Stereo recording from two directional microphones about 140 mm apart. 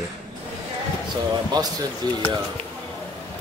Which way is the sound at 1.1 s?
30° right (ahead or behind).